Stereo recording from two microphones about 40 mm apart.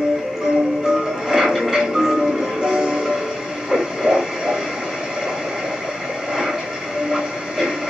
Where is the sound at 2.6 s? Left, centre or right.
Right.